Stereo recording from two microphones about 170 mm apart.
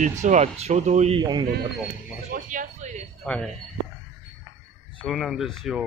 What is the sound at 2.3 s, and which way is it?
Speech, 50° right (ahead or behind).